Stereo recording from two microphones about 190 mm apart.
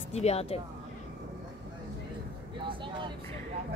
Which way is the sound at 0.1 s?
35° left (ahead or behind).